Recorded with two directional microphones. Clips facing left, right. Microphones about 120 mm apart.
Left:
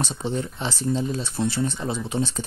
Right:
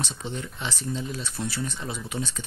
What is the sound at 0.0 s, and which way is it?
Speech, 35° left (ahead or behind).